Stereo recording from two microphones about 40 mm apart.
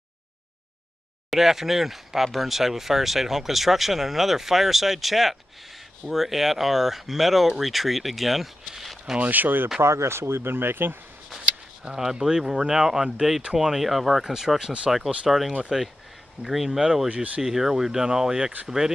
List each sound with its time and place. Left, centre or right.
1.3 s speech: centre
9.2 s speech: right
9.8 s speech: right
11.9 s speech: centre
17.1 s speech: right
17.4 s speech: centre